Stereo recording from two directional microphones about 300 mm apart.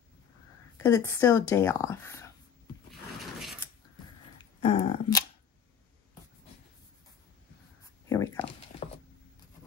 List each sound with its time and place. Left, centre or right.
0.7 s speech: centre
4.4 s dog: centre
8.1 s a sound: centre